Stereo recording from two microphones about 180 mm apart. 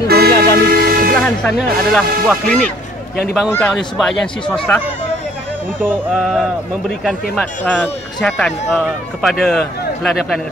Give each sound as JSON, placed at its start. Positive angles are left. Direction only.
{"t": 0.1, "sound": "toot", "side_deg": -60}
{"t": 0.6, "sound": "music", "side_deg": -60}
{"t": 1.1, "sound": "speech", "side_deg": 5}
{"t": 5.9, "sound": "speech", "side_deg": -5}